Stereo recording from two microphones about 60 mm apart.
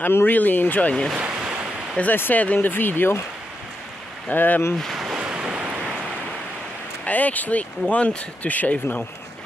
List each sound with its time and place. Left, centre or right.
0.0 s speech: left
1.1 s ocean: centre
2.0 s speech: left
4.3 s speech: left
4.7 s speech: centre
5.2 s waves: centre
7.1 s speech: left